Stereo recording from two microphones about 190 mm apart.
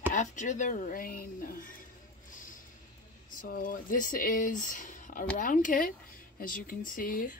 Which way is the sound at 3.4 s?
50° left (ahead or behind).